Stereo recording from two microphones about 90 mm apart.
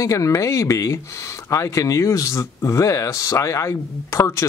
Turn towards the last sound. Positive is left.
turn(degrees=35)  # may be behind; listen again after turning